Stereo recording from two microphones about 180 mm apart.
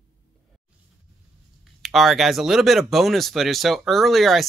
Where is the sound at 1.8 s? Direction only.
Centre (ahead or behind).